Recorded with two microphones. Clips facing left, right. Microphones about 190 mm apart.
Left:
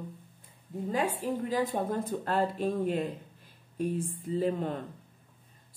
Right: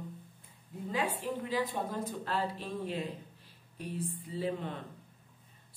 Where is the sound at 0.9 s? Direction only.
45° left (ahead or behind).